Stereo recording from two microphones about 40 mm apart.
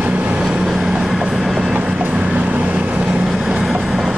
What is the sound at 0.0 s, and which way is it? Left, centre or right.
Vehicle, right.